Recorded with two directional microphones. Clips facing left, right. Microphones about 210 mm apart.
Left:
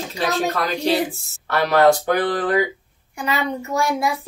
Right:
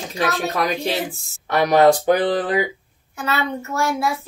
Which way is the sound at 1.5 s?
15° right (ahead or behind).